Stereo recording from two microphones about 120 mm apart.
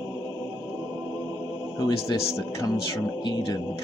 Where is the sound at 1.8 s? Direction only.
25° left (ahead or behind).